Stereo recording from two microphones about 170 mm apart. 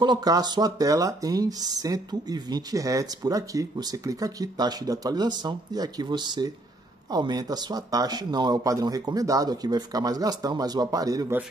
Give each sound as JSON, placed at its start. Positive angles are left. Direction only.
{"t": 0.0, "sound": "speech", "side_deg": -25}